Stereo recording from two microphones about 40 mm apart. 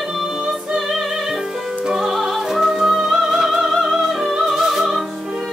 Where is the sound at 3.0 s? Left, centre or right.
Centre.